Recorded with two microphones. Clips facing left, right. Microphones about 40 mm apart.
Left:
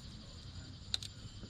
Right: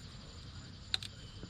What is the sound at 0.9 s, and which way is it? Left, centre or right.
Cricket, right.